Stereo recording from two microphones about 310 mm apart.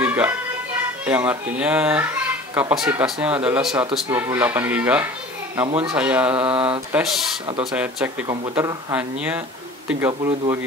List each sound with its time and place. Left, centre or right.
0.0 s music: centre
1.0 s speech: centre